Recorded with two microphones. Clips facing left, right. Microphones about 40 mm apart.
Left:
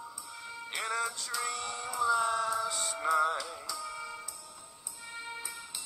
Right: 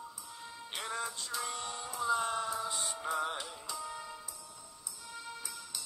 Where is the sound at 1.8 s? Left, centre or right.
Left.